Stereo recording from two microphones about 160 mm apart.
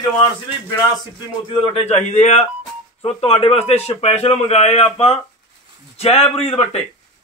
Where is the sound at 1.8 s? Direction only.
45° left (ahead or behind).